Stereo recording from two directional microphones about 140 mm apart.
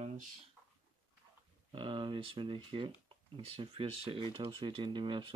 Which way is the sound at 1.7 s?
35° right (ahead or behind).